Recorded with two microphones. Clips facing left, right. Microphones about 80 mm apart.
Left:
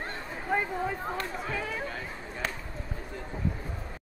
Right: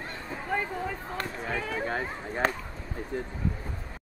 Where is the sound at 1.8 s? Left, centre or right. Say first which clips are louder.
Right 5 dB; right.